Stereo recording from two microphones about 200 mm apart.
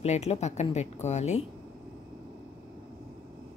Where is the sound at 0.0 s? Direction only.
35° left (ahead or behind).